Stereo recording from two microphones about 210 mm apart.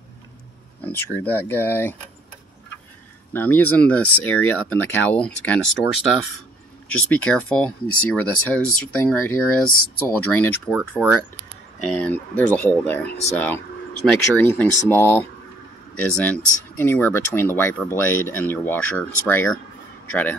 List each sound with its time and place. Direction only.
0.7 s speech: 10° left (ahead or behind)
3.3 s speech: 10° left (ahead or behind)